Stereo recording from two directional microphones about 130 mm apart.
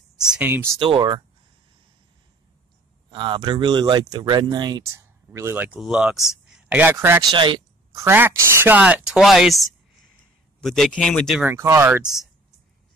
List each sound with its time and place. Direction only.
0.3 s speech: 15° right (ahead or behind)
0.7 s speech: 40° right (ahead or behind)
3.1 s speech: 40° right (ahead or behind)
4.9 s a man's voice: 20° right (ahead or behind)
7.3 s speech: 40° right (ahead or behind)
7.9 s speech: 20° right (ahead or behind); by 9.6 s centre (ahead or behind)
10.6 s a man's voice: centre (ahead or behind)
11.3 s speech: 20° right (ahead or behind)